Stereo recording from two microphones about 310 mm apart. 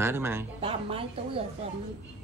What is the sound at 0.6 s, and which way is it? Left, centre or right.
Speech, centre.